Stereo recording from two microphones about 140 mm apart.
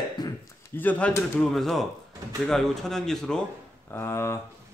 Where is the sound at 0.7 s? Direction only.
10° left (ahead or behind).